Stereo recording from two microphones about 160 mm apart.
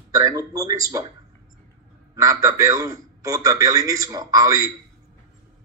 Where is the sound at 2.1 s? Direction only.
20° right (ahead or behind).